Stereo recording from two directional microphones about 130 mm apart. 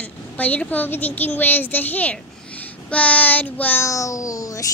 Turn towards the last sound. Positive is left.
turn(degrees=25)  # may be behind; listen again after turning